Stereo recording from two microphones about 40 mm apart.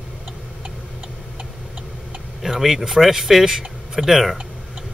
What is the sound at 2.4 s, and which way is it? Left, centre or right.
Speech, centre.